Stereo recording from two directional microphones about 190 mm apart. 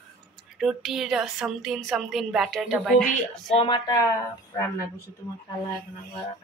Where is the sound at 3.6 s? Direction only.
20° left (ahead or behind).